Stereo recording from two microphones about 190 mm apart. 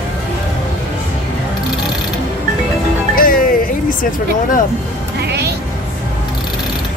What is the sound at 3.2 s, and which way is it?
Music, 50° left (ahead or behind).